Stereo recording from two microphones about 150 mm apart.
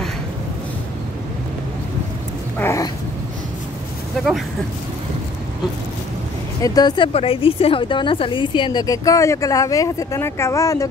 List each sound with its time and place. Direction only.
2.6 s dog: 20° left (ahead or behind)
6.6 s a woman's voice: 25° left (ahead or behind)
7.2 s a woman's voice: 40° left (ahead or behind); by 10.9 s 20° left (ahead or behind)